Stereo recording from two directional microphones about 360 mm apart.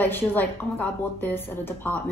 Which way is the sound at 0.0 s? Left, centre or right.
Centre.